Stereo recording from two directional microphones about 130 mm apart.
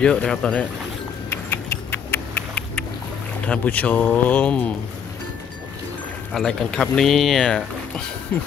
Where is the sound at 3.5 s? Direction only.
10° left (ahead or behind).